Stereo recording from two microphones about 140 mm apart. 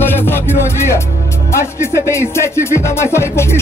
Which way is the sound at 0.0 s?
15° left (ahead or behind).